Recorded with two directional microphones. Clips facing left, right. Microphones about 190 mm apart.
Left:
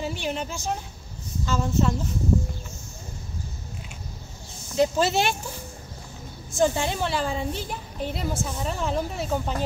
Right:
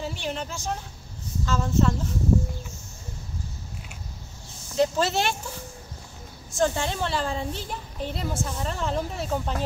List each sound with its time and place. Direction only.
0.0 s a woman's voice: 10° left (ahead or behind)
4.7 s a woman's voice: 10° left (ahead or behind)
6.6 s a child's voice: 10° left (ahead or behind)